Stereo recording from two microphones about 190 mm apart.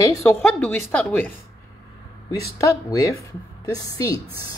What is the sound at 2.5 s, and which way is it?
A woman's voice, 15° left (ahead or behind).